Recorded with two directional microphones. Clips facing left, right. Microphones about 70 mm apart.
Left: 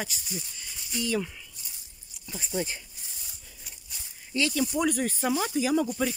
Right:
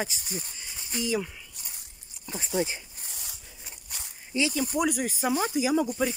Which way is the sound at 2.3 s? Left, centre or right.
Right.